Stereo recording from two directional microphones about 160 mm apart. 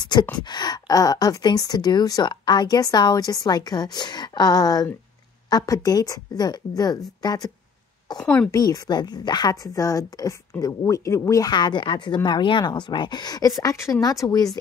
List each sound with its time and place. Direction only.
0.0 s speech: 25° left (ahead or behind)
8.2 s a woman's voice: 5° left (ahead or behind)
8.5 s speech: 25° left (ahead or behind)